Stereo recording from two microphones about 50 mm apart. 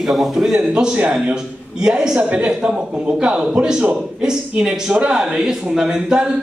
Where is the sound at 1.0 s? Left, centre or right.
Right.